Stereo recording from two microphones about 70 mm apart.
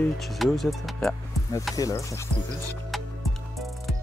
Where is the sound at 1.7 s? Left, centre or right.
Left.